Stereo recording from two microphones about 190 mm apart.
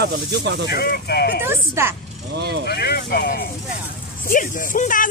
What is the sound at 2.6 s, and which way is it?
Speech, 60° left (ahead or behind).